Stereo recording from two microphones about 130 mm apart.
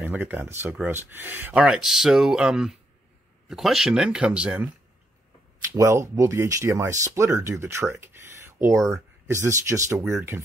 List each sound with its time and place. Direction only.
0.0 s speech: 15° right (ahead or behind)
5.8 s speech: 20° right (ahead or behind)